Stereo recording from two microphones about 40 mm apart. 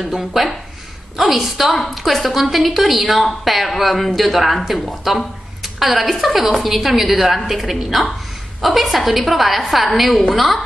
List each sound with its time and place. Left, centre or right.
0.0 s a woman's voice: centre